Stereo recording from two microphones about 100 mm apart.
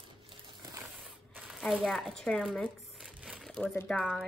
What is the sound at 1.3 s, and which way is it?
Crumpling, 10° right (ahead or behind).